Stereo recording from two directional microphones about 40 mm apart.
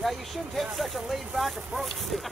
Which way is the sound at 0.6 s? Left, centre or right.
Centre.